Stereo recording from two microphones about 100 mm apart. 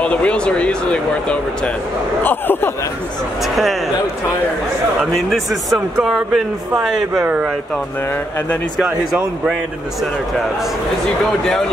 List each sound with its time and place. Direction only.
0.0 s speech: 10° left (ahead or behind)
3.4 s speech: centre (ahead or behind)
5.3 s speech: centre (ahead or behind)
8.8 s speech: 10° right (ahead or behind)